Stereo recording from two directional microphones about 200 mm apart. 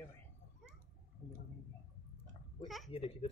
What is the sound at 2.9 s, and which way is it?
Speech, 30° left (ahead or behind).